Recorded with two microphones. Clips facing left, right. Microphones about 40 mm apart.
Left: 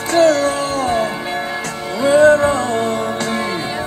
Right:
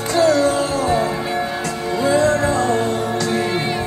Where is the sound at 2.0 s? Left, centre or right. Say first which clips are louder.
Left 6 dB; left.